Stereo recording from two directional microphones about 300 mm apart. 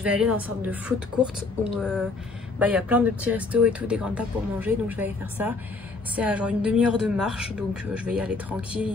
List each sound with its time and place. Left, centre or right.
0.0 s speech: centre